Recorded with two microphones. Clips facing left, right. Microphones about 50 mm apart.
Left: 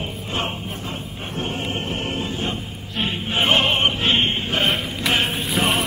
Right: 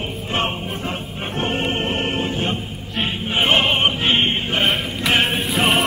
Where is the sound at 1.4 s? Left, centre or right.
Right.